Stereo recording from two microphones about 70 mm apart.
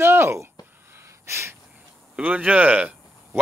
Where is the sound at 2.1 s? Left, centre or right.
Right.